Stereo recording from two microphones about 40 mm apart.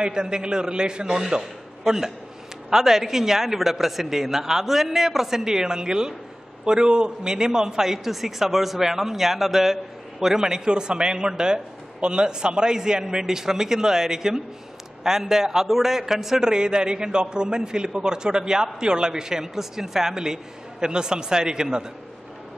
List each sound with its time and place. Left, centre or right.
0.0 s a man's voice: right
1.4 s a man's voice: centre
16.4 s a man's voice: right